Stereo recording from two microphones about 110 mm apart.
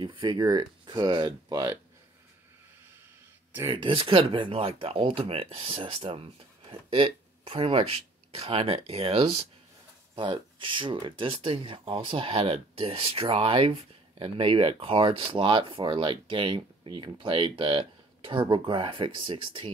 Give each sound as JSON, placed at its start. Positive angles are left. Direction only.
{"t": 0.0, "sound": "speech", "side_deg": -45}
{"t": 3.7, "sound": "speech", "side_deg": -50}
{"t": 10.1, "sound": "speech", "side_deg": -50}